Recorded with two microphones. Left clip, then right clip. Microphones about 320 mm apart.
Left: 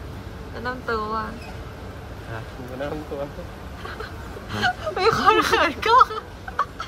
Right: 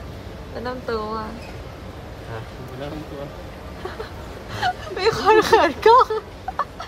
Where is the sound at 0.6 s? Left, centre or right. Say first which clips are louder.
Even; centre.